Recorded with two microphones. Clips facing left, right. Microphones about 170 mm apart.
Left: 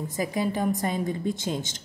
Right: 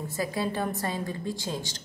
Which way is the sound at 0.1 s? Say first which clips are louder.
Left 2 dB; 15° left (ahead or behind).